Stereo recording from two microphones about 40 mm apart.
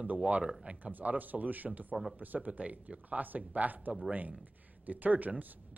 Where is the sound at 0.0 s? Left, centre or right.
Right.